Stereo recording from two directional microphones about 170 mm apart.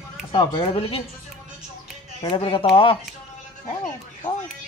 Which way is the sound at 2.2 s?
30° left (ahead or behind).